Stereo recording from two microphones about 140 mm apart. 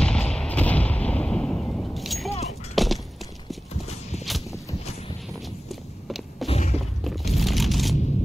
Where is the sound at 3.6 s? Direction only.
50° left (ahead or behind).